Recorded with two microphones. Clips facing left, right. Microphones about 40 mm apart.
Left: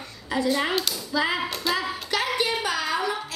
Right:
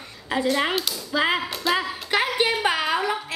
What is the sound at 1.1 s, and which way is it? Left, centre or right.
Speech, right.